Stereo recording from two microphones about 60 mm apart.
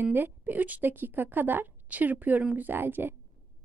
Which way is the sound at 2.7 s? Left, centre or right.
Right.